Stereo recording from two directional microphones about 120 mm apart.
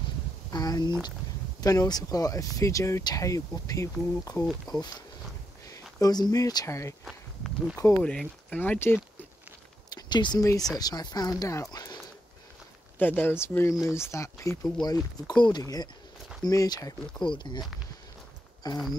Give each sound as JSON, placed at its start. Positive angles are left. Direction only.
{"t": 0.5, "sound": "a sound", "side_deg": 35}
{"t": 1.6, "sound": "speech", "side_deg": 30}
{"t": 7.1, "sound": "a sound", "side_deg": 0}
{"t": 7.7, "sound": "speech", "side_deg": 20}
{"t": 8.0, "sound": "speech", "side_deg": 10}
{"t": 9.8, "sound": "speech", "side_deg": 35}
{"t": 13.0, "sound": "speech", "side_deg": 15}